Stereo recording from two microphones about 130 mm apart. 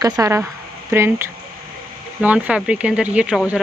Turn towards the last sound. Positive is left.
turn(degrees=-10)  # may be behind; listen again after turning